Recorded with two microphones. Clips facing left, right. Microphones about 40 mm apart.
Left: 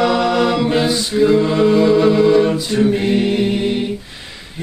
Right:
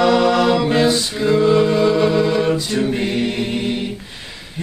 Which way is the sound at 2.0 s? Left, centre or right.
Centre.